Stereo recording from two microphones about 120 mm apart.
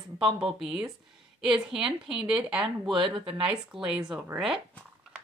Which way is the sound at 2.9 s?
45° right (ahead or behind).